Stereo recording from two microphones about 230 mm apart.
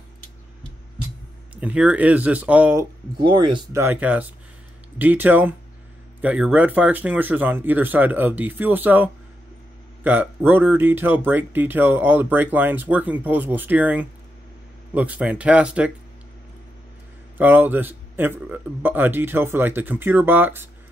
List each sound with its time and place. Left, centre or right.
1.5 s speech: centre
3.2 s speech: centre
3.8 s speech: centre
17.4 s speech: centre